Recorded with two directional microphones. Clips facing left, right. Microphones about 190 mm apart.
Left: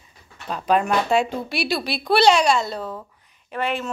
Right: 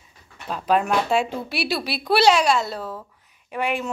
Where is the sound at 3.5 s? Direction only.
15° right (ahead or behind).